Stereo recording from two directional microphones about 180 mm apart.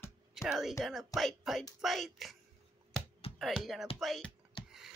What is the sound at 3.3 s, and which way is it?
Speech, centre (ahead or behind).